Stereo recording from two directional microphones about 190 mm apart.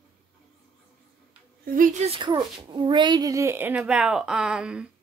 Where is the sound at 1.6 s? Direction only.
45° right (ahead or behind).